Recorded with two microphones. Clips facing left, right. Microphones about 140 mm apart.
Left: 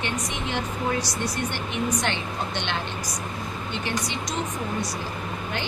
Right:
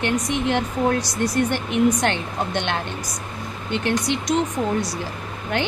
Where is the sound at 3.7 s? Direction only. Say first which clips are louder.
Right 9 dB; 60° right (ahead or behind).